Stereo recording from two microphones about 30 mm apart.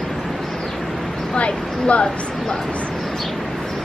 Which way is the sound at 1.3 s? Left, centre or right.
Left.